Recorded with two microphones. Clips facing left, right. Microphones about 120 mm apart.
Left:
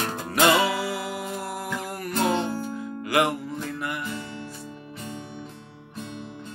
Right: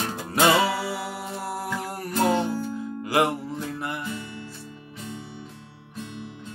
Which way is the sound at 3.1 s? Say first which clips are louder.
Even; 30° right (ahead or behind).